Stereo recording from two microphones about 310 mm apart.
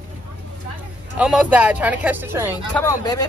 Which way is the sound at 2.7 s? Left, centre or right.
Centre.